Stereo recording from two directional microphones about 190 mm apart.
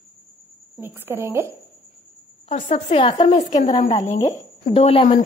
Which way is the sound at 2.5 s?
35° left (ahead or behind).